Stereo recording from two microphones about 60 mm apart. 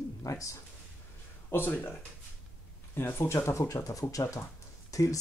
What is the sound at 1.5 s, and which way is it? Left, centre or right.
Speech, left.